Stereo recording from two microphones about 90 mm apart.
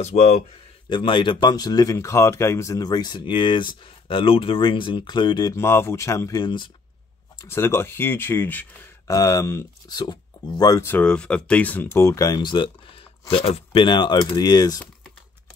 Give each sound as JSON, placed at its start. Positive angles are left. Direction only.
{"t": 0.8, "sound": "speech", "side_deg": 65}
{"t": 2.8, "sound": "speech", "side_deg": 50}
{"t": 5.5, "sound": "speech", "side_deg": 30}
{"t": 6.4, "sound": "speech", "side_deg": 65}
{"t": 7.4, "sound": "speech", "side_deg": 30}
{"t": 9.0, "sound": "speech", "side_deg": 35}
{"t": 9.8, "sound": "speech", "side_deg": 55}
{"t": 11.0, "sound": "speech", "side_deg": 10}
{"t": 11.9, "sound": "speech", "side_deg": 35}
{"t": 12.4, "sound": "speech", "side_deg": 60}
{"t": 13.3, "sound": "speech", "side_deg": 85}